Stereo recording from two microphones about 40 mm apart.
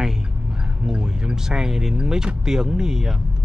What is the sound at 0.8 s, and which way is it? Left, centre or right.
Music, centre.